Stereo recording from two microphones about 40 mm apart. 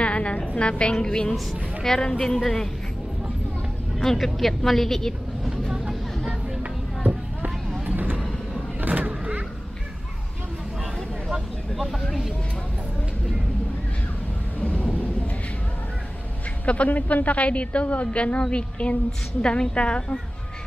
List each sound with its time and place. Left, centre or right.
0.0 s music: left
0.6 s a woman's voice: left; by 2.7 s centre
4.2 s a woman's voice: centre
5.7 s vehicle: centre
6.6 s a sound: right
7.8 s vehicle: right
11.7 s a woman's voice: centre
14.6 s thunder: left
16.6 s a woman's voice: left